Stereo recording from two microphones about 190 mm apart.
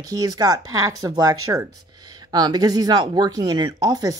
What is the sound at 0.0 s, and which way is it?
Speech, 20° right (ahead or behind).